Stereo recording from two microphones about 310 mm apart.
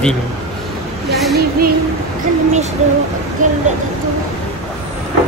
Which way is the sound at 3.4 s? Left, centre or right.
Right.